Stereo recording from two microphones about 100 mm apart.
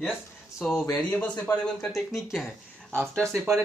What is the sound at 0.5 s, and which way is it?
Speech, 5° left (ahead or behind).